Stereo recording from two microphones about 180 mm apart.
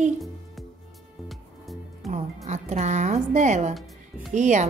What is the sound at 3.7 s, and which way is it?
Speech, centre (ahead or behind).